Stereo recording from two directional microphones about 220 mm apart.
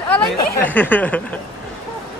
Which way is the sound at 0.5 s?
10° left (ahead or behind).